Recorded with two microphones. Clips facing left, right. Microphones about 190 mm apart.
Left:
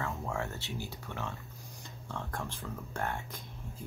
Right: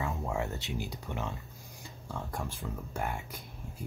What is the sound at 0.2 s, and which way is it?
Speech, 15° right (ahead or behind).